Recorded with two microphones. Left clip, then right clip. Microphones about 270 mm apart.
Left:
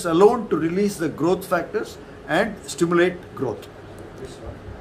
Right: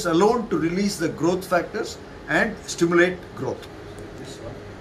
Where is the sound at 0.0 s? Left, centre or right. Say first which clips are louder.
Left 3 dB; centre.